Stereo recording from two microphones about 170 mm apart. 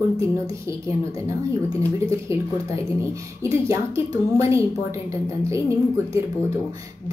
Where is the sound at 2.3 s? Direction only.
15° right (ahead or behind).